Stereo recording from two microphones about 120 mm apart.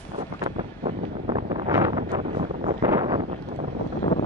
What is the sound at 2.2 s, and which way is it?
Vehicle, 65° right (ahead or behind).